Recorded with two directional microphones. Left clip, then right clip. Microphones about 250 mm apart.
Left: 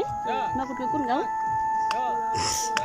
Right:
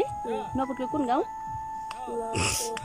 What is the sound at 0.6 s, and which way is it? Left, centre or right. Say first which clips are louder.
Speech: left 2 dB; centre.